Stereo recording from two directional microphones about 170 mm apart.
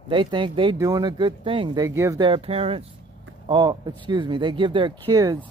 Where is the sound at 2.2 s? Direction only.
35° right (ahead or behind).